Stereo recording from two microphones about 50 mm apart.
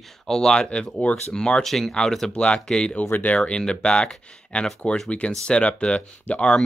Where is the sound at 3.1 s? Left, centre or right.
Left.